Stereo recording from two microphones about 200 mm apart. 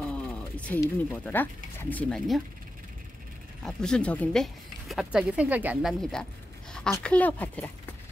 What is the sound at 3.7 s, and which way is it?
Speech, 5° left (ahead or behind).